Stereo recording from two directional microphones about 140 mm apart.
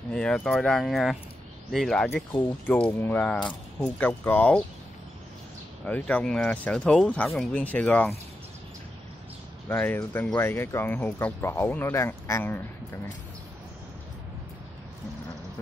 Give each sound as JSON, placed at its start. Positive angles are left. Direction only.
{"t": 0.1, "sound": "speech", "side_deg": 5}
{"t": 5.9, "sound": "speech", "side_deg": 10}
{"t": 9.7, "sound": "speech", "side_deg": 15}